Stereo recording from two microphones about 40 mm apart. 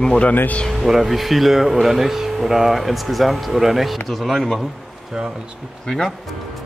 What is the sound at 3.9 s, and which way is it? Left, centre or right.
Speech, centre.